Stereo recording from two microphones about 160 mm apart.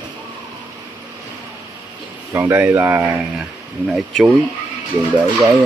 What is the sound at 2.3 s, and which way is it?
Speech, 15° right (ahead or behind).